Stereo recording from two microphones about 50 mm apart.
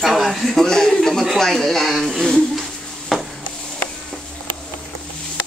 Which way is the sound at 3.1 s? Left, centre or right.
Centre.